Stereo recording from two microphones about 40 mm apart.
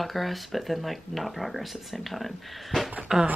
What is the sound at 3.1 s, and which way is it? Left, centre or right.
Speech, centre.